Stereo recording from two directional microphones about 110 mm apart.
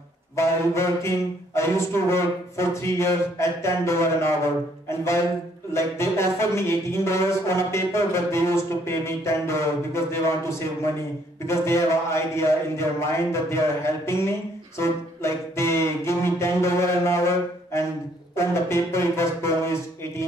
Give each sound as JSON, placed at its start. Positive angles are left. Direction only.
{"t": 0.4, "sound": "speech", "side_deg": 25}
{"t": 4.8, "sound": "a sound", "side_deg": 25}
{"t": 5.7, "sound": "speech", "side_deg": 25}
{"t": 18.3, "sound": "speech", "side_deg": 25}